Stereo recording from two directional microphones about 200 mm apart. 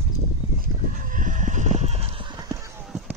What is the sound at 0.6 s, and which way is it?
Horse, 40° right (ahead or behind).